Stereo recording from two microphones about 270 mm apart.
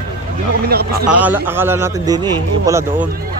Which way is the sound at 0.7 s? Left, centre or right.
Right.